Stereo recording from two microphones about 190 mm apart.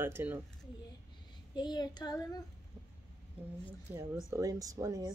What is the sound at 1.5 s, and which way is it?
Child singing, 25° left (ahead or behind).